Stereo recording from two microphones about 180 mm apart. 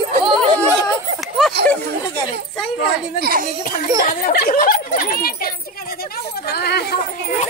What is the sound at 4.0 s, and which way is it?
Speech, 50° left (ahead or behind).